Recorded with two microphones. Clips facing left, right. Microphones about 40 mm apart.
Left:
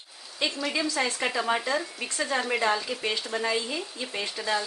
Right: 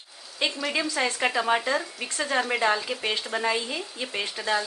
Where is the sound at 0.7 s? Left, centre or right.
Right.